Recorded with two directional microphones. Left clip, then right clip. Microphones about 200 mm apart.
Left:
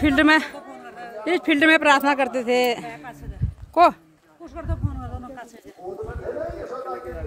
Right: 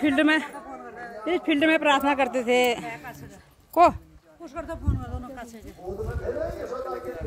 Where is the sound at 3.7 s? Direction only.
Centre (ahead or behind).